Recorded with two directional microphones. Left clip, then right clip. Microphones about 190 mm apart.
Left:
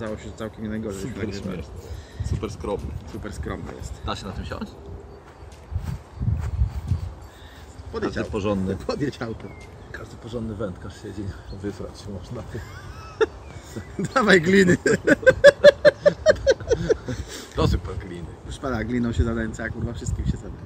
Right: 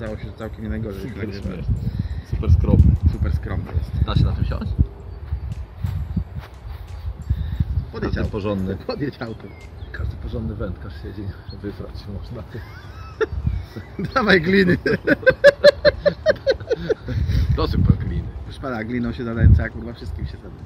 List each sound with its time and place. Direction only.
0.0 s speech: 15° right (ahead or behind)
1.3 s speech: 5° right (ahead or behind)
3.3 s speech: 15° right (ahead or behind)
7.9 s speech: 15° right (ahead or behind)
13.2 s a sound: 15° right (ahead or behind)